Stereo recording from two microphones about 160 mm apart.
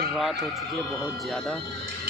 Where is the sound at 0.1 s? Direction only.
Centre (ahead or behind).